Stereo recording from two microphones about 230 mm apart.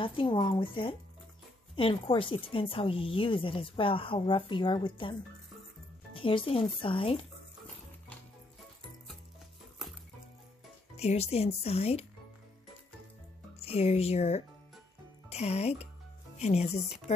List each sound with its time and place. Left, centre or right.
0.0 s speech: left
6.1 s speech: left
11.0 s speech: left
13.6 s speech: left